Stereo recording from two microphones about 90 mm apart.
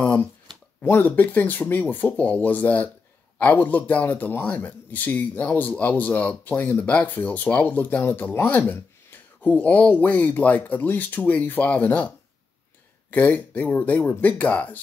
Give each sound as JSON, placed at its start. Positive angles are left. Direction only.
{"t": 0.0, "sound": "a sound", "side_deg": 10}
{"t": 0.8, "sound": "speech", "side_deg": 20}
{"t": 13.1, "sound": "speech", "side_deg": 20}